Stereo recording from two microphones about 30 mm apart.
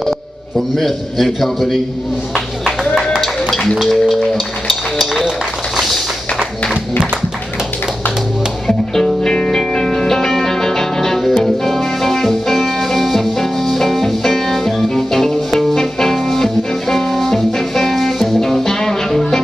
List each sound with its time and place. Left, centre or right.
0.7 s a man's voice: centre
3.4 s music: centre
3.9 s a man's voice: centre
4.6 s music: centre
5.8 s a sound: centre
8.6 s music: centre
11.1 s music: centre